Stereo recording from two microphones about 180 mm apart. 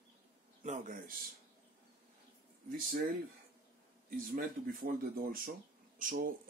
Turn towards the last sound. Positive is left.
turn(degrees=-50)  # may be behind; listen again after turning